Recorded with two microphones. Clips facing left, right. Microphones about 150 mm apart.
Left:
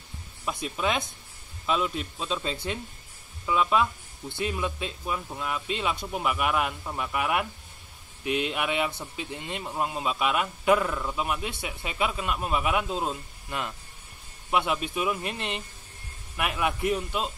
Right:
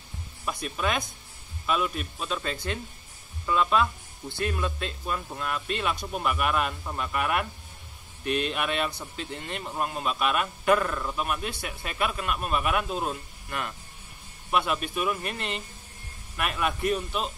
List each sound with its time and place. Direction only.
0.7 s speech: 20° left (ahead or behind)